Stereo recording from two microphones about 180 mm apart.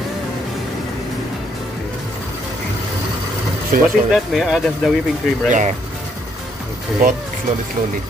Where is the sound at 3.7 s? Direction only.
50° right (ahead or behind).